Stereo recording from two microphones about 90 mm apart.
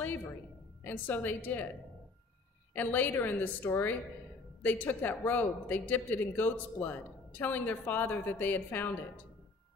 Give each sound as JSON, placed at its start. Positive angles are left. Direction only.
{"t": 0.8, "sound": "speech", "side_deg": 20}
{"t": 2.7, "sound": "speech", "side_deg": 20}